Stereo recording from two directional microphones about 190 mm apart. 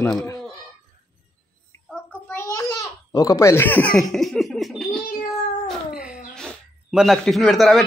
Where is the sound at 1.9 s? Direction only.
10° left (ahead or behind).